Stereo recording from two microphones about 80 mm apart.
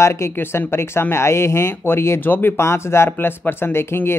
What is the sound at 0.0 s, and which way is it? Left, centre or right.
Speech, left.